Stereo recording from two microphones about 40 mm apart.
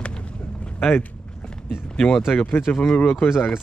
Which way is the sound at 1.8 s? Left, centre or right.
Centre.